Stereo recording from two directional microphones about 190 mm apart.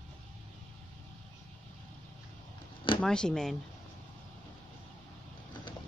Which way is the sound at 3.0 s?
5° left (ahead or behind).